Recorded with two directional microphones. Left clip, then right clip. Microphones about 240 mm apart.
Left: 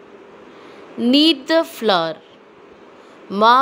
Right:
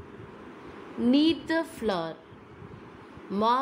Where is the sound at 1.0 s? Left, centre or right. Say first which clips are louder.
Left 9 dB; centre.